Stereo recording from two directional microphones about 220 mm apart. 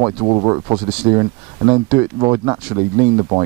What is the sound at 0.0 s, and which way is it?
Speech, 25° right (ahead or behind).